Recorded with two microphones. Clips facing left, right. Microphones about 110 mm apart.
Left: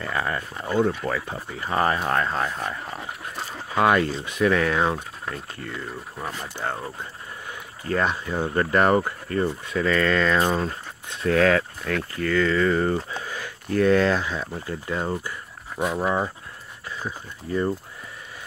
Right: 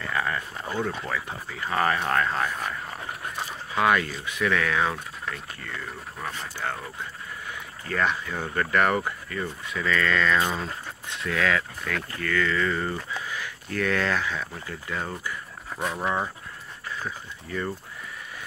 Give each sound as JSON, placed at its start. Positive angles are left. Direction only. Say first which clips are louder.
{"t": 0.0, "sound": "speech", "louder": "left 2 dB", "side_deg": 30}
{"t": 3.7, "sound": "speech", "louder": "left 3 dB", "side_deg": 35}
{"t": 6.1, "sound": "speech", "louder": "left 1 dB", "side_deg": 20}
{"t": 15.8, "sound": "speech", "louder": "left 4 dB", "side_deg": 10}
{"t": 17.5, "sound": "speech", "louder": "left 7 dB", "side_deg": 25}